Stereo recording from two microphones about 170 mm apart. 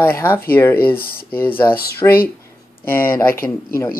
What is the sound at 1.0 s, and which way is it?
Speech, 60° left (ahead or behind).